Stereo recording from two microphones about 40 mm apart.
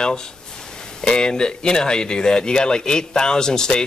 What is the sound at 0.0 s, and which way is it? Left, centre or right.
Speech, centre.